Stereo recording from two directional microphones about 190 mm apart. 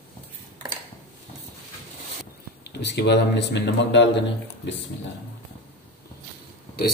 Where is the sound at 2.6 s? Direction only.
65° left (ahead or behind).